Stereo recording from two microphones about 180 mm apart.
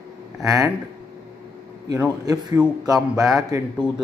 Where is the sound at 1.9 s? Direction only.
20° right (ahead or behind).